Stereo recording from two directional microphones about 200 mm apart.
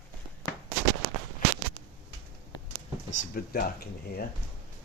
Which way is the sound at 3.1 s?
45° left (ahead or behind).